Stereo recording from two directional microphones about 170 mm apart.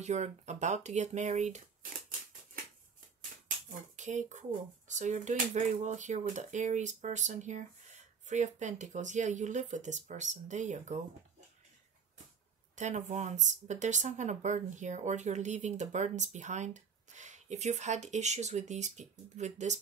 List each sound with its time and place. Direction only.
0.0 s speech: 40° right (ahead or behind)
3.9 s speech: 45° right (ahead or behind)
12.7 s speech: 45° right (ahead or behind)